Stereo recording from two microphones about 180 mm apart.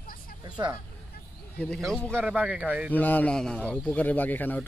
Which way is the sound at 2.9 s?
10° left (ahead or behind).